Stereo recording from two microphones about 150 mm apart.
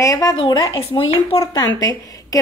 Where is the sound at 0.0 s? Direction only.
25° left (ahead or behind).